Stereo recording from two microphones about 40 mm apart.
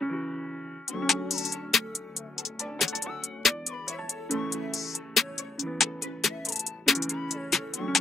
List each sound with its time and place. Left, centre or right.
0.0 s music: centre
0.9 s music: centre